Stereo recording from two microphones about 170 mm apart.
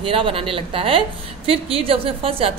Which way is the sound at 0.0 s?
30° right (ahead or behind).